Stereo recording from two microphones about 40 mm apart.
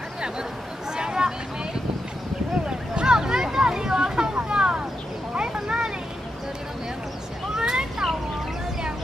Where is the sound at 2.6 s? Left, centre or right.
Centre.